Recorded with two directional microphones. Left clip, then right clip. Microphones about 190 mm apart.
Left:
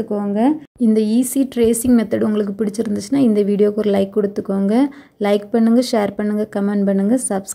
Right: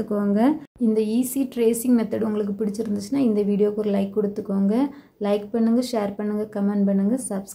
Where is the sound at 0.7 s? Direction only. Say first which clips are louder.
Left 5 dB; 35° left (ahead or behind).